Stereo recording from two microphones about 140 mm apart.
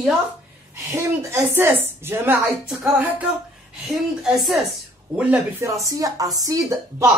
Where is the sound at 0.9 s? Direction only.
20° right (ahead or behind).